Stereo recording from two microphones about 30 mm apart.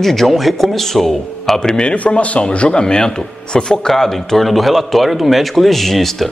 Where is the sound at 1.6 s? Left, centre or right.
Left.